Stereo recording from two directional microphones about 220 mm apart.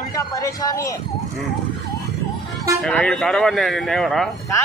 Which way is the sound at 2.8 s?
5° left (ahead or behind).